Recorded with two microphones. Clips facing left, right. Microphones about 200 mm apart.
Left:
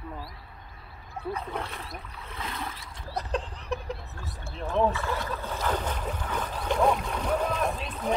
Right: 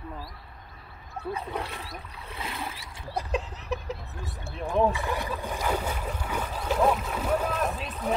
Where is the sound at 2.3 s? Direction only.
10° right (ahead or behind).